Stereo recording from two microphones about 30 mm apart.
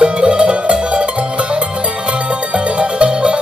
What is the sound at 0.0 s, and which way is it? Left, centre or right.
Music, right.